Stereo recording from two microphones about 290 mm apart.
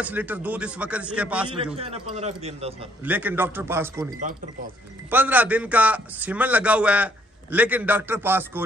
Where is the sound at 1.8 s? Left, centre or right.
Centre.